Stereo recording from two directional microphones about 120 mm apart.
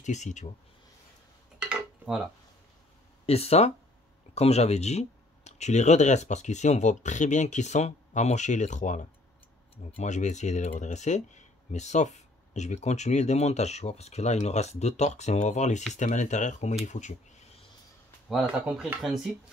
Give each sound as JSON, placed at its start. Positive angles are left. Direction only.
{"t": 0.0, "sound": "speech", "side_deg": 85}
{"t": 1.6, "sound": "dishes", "side_deg": -5}
{"t": 3.3, "sound": "speech", "side_deg": 60}
{"t": 15.9, "sound": "speech", "side_deg": 90}
{"t": 18.3, "sound": "speech", "side_deg": -5}
{"t": 18.9, "sound": "speech", "side_deg": -15}